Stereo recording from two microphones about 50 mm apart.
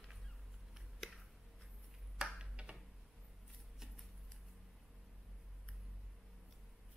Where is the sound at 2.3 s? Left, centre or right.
Right.